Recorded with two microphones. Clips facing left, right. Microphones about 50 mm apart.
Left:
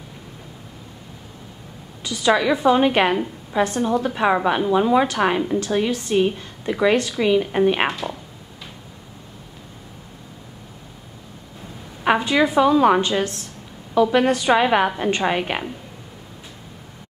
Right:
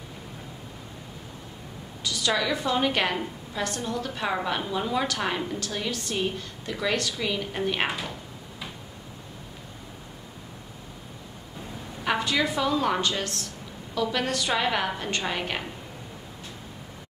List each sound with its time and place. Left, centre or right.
2.0 s a woman's voice: left
8.0 s a sound: centre
12.2 s a woman's voice: left